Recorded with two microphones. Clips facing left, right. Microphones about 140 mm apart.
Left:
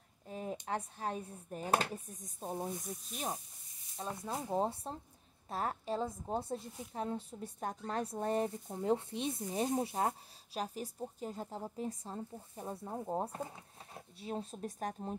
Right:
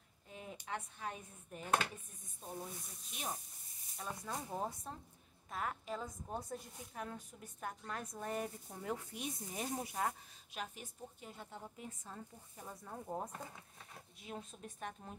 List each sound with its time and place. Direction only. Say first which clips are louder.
0.3 s a woman's voice: left 7 dB; 40° left (ahead or behind)
4.0 s a woman's voice: left 4 dB; 25° left (ahead or behind)